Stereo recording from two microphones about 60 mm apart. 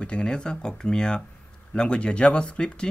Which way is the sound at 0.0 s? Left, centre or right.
Centre.